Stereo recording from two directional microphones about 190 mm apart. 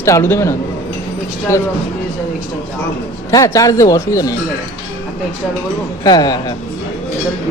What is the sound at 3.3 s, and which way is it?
Speech, 20° left (ahead or behind).